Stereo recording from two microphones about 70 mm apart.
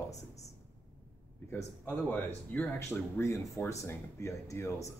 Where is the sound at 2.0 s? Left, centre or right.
Left.